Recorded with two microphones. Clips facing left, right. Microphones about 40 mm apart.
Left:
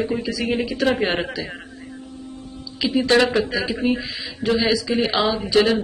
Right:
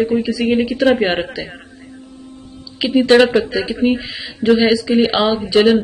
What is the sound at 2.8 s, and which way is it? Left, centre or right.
Speech, right.